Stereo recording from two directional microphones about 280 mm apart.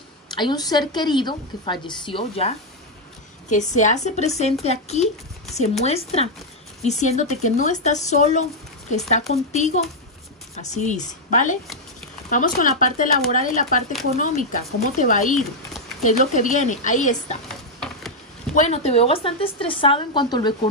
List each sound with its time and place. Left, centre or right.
0.3 s a woman's voice: centre
17.5 s a sound: centre
18.5 s speech: left